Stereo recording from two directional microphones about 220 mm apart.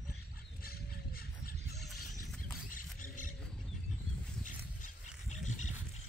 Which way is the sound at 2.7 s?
35° left (ahead or behind).